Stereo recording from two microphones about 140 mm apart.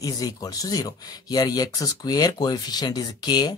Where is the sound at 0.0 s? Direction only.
25° left (ahead or behind).